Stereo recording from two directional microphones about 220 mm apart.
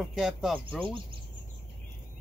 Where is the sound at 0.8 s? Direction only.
20° right (ahead or behind).